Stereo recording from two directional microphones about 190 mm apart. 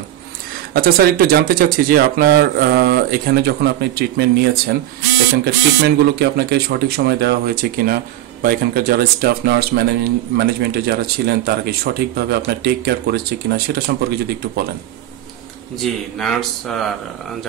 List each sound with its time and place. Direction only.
0.7 s speech: 50° right (ahead or behind)
15.8 s speech: centre (ahead or behind)